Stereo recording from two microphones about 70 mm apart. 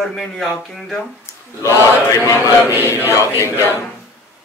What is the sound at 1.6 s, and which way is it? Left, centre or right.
Speech, left.